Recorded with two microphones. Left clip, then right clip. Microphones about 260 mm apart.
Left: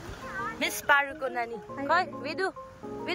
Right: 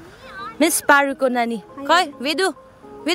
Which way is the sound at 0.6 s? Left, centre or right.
Right.